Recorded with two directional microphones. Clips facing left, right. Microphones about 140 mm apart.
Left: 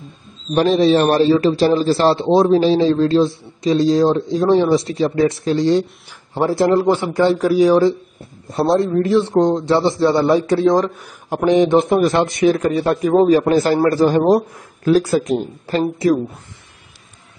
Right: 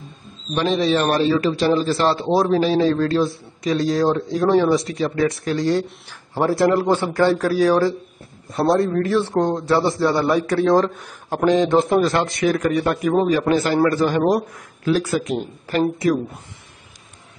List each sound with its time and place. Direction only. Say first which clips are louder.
0.6 s a man's voice: left 5 dB; 35° left (ahead or behind)